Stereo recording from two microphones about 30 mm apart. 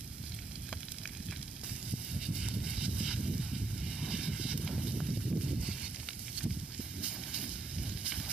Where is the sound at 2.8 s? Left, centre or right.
Right.